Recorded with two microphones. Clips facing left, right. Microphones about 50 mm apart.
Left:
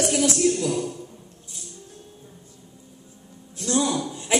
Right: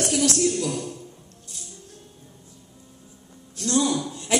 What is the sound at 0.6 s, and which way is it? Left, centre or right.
Speech, centre.